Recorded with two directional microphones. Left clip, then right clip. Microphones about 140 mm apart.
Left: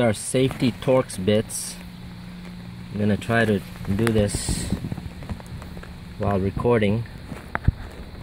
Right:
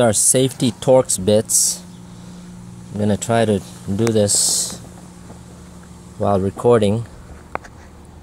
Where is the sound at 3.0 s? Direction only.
5° right (ahead or behind).